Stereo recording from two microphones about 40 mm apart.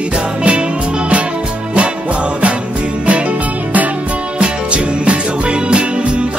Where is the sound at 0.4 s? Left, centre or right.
Right.